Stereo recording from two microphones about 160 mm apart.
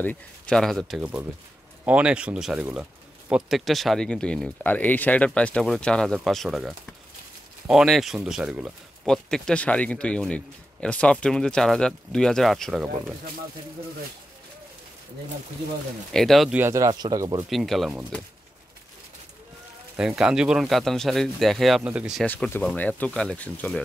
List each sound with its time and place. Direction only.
0.0 s speech: 10° left (ahead or behind)
16.1 s speech: centre (ahead or behind)
16.5 s speech: 15° right (ahead or behind)
17.5 s speech: centre (ahead or behind)
20.0 s speech: 5° right (ahead or behind)
22.2 s speech: 10° left (ahead or behind)